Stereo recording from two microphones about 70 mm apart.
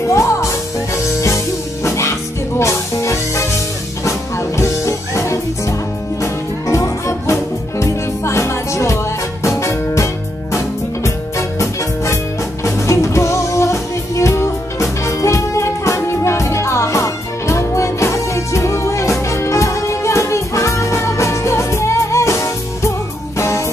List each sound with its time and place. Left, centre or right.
0.1 s music: left